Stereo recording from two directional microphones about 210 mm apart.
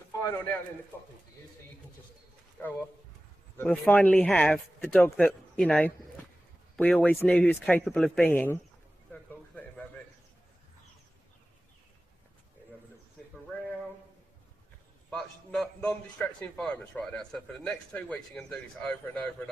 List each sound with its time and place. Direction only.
2.6 s a man's voice: 10° left (ahead or behind)
9.1 s a sound: 10° left (ahead or behind)
15.0 s a man's voice: 5° left (ahead or behind)